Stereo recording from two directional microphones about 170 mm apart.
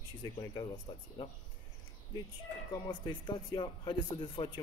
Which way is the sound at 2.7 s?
25° left (ahead or behind).